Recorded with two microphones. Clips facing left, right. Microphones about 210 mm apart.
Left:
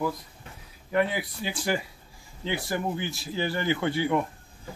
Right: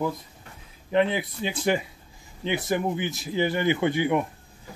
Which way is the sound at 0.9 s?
20° right (ahead or behind).